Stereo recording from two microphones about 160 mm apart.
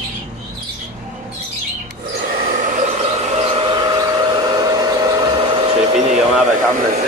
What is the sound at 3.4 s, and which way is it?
Hair dryer, 35° right (ahead or behind).